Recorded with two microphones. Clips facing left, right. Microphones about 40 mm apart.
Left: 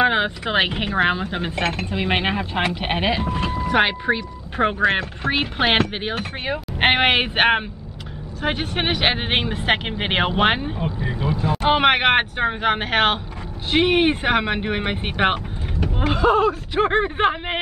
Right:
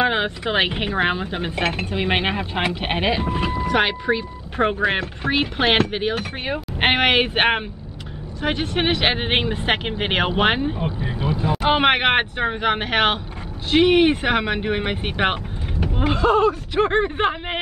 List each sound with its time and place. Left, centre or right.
0.0 s speech: centre
3.3 s speech: centre
3.6 s speech: centre
4.8 s speech: centre
11.1 s speech: right
11.4 s speech: centre